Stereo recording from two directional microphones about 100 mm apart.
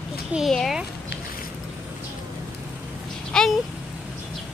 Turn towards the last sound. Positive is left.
turn(degrees=5)  # may be behind; listen again after turning